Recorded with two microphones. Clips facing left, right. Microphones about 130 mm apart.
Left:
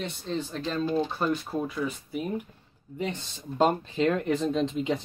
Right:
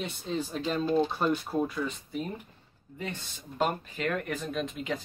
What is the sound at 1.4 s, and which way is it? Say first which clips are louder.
Speech: even; centre (ahead or behind).